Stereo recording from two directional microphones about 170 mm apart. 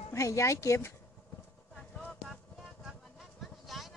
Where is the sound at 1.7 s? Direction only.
5° left (ahead or behind).